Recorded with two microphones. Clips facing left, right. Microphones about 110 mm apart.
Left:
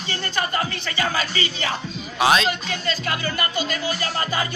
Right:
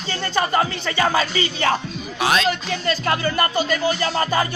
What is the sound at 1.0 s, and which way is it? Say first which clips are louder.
Speech: right 5 dB; 30° right (ahead or behind).